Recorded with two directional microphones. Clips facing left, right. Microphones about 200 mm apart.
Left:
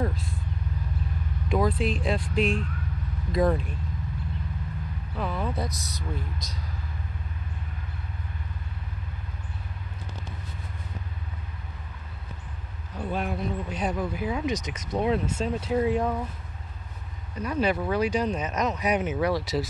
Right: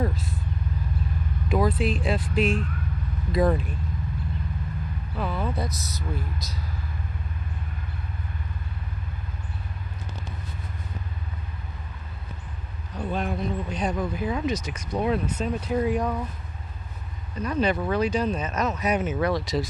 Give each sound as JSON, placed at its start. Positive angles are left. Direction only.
{"t": 0.0, "sound": "vehicle", "side_deg": -5}
{"t": 1.5, "sound": "speech", "side_deg": -5}
{"t": 5.1, "sound": "speech", "side_deg": 0}
{"t": 12.9, "sound": "speech", "side_deg": 10}
{"t": 17.4, "sound": "speech", "side_deg": 10}